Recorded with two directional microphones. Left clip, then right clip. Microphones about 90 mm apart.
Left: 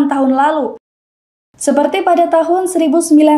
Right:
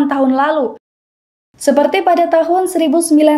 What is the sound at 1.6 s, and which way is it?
A woman's voice, 30° right (ahead or behind).